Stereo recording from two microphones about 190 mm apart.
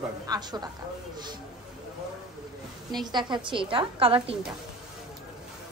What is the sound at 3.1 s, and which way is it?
A woman's voice, 25° right (ahead or behind).